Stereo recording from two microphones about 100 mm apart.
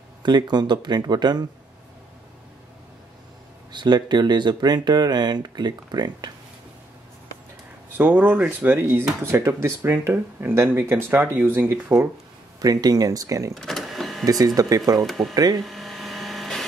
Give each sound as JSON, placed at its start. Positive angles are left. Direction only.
{"t": 0.2, "sound": "speech", "side_deg": -45}
{"t": 3.7, "sound": "speech", "side_deg": -45}
{"t": 8.0, "sound": "speech", "side_deg": -15}
{"t": 12.5, "sound": "speech", "side_deg": -40}
{"t": 13.6, "sound": "vehicle", "side_deg": 5}
{"t": 14.4, "sound": "speech", "side_deg": -35}
{"t": 15.0, "sound": "speech", "side_deg": 0}
{"t": 15.3, "sound": "speech", "side_deg": -40}
{"t": 15.6, "sound": "a sound", "side_deg": 0}